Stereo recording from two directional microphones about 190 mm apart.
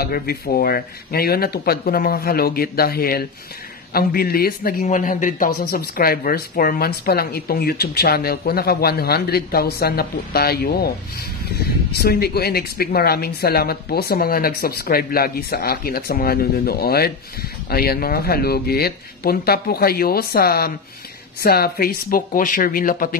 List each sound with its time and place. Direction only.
0.0 s speech: 50° left (ahead or behind)
4.8 s speech: 40° left (ahead or behind)